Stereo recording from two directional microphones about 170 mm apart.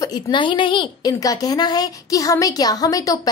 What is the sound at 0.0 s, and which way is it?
A woman's voice, 25° left (ahead or behind).